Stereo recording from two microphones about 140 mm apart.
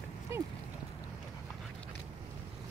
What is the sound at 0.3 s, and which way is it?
Clip-clop, 20° right (ahead or behind).